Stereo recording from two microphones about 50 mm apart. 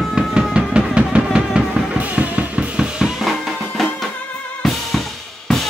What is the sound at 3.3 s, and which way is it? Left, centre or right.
Music, centre.